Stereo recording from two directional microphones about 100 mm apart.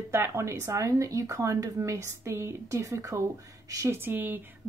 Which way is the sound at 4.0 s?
20° right (ahead or behind).